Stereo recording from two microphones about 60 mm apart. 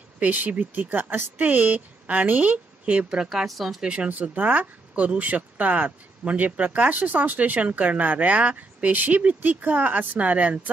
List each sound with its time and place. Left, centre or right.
0.2 s speech: right
3.3 s speech: centre
3.8 s speech: centre
4.1 s speech: right